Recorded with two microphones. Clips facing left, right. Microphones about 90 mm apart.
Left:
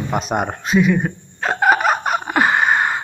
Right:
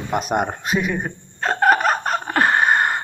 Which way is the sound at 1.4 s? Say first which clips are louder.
Left 1 dB; 5° left (ahead or behind).